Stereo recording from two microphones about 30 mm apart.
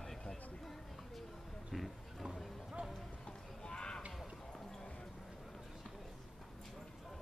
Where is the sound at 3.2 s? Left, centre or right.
Left.